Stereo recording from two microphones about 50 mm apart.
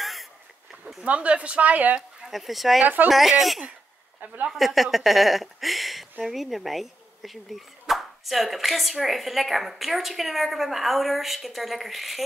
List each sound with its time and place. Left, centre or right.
0.0 s a sound: centre
1.0 s a woman's voice: right
2.3 s speech: centre
2.8 s speech: right
3.1 s speech: centre